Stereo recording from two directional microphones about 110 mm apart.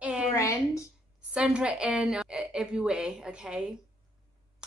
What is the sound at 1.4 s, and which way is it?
Speech, 10° right (ahead or behind).